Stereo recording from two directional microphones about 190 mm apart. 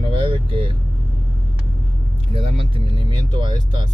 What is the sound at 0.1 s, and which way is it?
Vehicle, 25° right (ahead or behind).